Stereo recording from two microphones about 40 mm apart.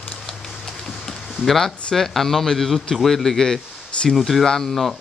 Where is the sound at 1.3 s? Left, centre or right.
Centre.